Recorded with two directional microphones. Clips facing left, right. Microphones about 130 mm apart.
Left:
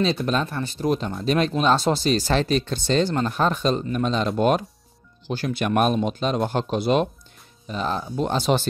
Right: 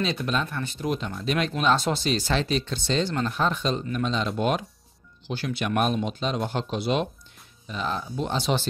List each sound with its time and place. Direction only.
0.0 s speech: 30° left (ahead or behind); by 8.6 s 50° left (ahead or behind)